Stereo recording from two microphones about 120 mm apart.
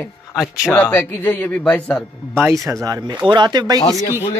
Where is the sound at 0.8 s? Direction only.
20° left (ahead or behind).